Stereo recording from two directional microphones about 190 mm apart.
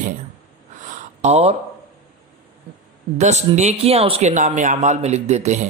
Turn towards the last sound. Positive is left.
turn(degrees=-35)  # may be behind; listen again after turning